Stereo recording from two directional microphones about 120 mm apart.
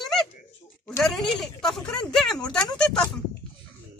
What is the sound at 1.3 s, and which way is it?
Speech, centre (ahead or behind).